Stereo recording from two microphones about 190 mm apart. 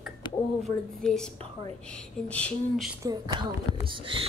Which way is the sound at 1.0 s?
5° left (ahead or behind).